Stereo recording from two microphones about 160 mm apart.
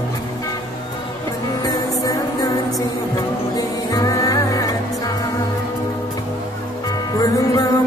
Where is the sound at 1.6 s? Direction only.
20° left (ahead or behind).